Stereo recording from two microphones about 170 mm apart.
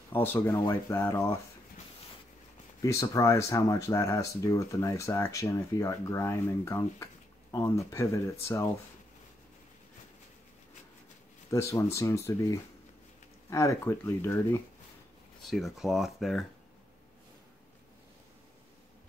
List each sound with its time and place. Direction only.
0.1 s speech: 10° left (ahead or behind)
2.8 s speech: 20° left (ahead or behind)
11.5 s speech: 15° left (ahead or behind)
15.4 s speech: centre (ahead or behind)